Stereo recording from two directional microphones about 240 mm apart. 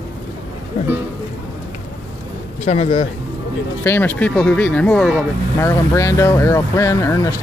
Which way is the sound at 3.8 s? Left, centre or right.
Centre.